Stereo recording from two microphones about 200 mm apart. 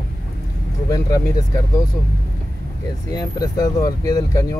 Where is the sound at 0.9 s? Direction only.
15° left (ahead or behind).